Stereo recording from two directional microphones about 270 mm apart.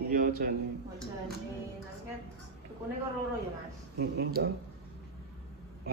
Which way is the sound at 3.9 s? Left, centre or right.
Right.